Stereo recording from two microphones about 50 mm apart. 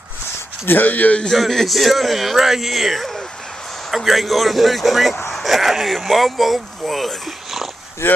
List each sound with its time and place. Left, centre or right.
0.7 s speech: left
1.3 s speech: centre
8.0 s speech: left